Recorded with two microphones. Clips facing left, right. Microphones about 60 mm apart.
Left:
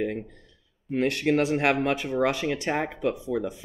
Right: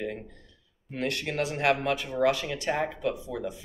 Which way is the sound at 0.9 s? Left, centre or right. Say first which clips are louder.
Left 7 dB; left.